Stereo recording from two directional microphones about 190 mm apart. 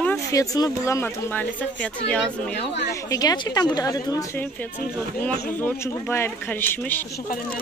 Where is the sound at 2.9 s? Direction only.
20° left (ahead or behind).